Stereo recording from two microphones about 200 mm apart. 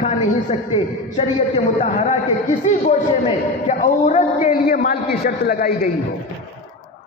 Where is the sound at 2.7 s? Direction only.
30° left (ahead or behind).